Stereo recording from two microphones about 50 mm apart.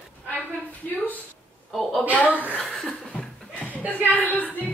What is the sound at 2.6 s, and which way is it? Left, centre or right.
Laughter, centre.